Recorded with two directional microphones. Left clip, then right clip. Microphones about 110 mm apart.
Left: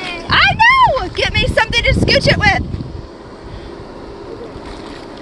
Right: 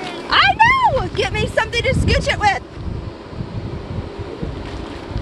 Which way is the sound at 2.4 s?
85° left.